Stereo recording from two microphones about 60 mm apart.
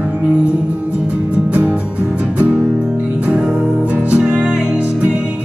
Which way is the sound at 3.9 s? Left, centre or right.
Right.